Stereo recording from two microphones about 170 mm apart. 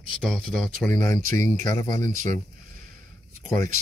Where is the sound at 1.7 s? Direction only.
20° left (ahead or behind).